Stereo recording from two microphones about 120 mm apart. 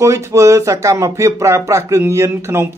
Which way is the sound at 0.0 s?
25° right (ahead or behind).